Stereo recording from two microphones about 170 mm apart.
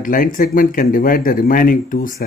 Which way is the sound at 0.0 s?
50° left (ahead or behind).